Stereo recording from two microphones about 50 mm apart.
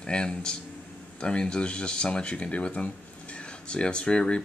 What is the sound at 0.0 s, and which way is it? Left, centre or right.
Speech, centre.